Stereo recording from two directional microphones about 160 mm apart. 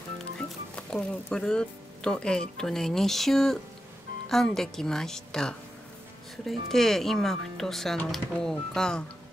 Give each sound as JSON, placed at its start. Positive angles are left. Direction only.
{"t": 0.4, "sound": "music", "side_deg": 5}
{"t": 2.5, "sound": "speech", "side_deg": 5}